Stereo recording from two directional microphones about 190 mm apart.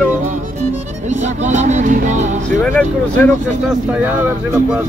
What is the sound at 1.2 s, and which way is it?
Music, 40° right (ahead or behind).